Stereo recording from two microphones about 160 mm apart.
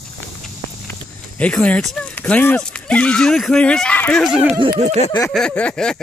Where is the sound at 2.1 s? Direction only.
10° left (ahead or behind).